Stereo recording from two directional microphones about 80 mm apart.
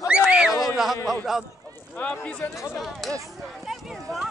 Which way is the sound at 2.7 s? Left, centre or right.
Centre.